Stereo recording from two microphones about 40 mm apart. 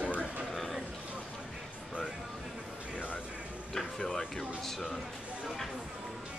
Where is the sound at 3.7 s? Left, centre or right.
Centre.